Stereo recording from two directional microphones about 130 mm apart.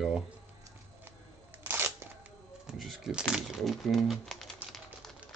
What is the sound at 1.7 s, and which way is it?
Scissors, 15° right (ahead or behind).